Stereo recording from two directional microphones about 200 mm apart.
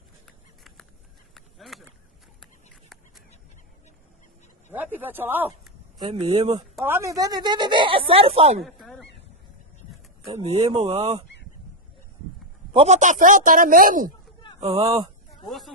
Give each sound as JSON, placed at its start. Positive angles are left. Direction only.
{"t": 1.3, "sound": "a sound", "side_deg": 0}
{"t": 4.7, "sound": "speech", "side_deg": -10}
{"t": 5.9, "sound": "speech", "side_deg": -25}
{"t": 6.8, "sound": "speech", "side_deg": -15}
{"t": 8.6, "sound": "a sound", "side_deg": 0}
{"t": 10.2, "sound": "speech", "side_deg": -30}
{"t": 12.7, "sound": "a man's voice", "side_deg": -35}
{"t": 14.6, "sound": "speech", "side_deg": -30}
{"t": 15.4, "sound": "snake", "side_deg": 0}